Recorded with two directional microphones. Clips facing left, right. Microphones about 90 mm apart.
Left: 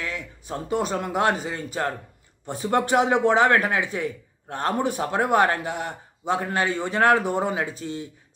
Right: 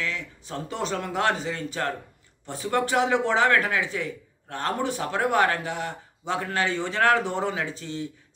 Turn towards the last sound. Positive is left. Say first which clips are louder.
# left 3 dB
turn(degrees=20)  # may be behind; listen again after turning